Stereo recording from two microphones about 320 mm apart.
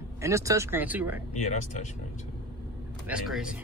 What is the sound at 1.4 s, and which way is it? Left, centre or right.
Speech, left.